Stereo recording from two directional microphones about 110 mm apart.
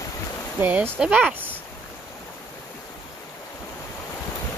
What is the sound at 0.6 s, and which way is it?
Speech, 15° right (ahead or behind).